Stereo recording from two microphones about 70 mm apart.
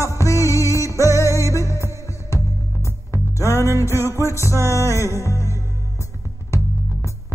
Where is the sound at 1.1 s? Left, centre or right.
Left.